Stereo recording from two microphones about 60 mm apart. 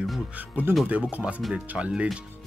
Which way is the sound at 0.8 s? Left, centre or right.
Right.